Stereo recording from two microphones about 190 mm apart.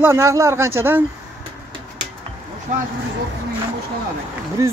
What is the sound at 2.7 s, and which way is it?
Speech, 40° right (ahead or behind).